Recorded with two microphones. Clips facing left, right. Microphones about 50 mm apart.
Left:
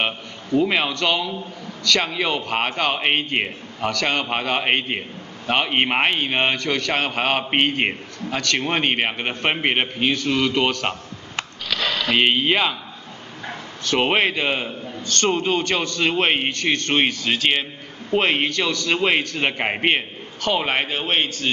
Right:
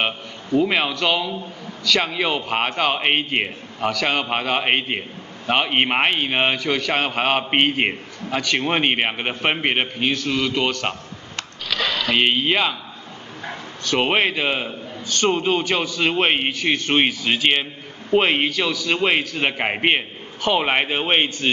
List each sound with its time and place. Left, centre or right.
0.6 s a man's voice: centre
13.8 s a man's voice: centre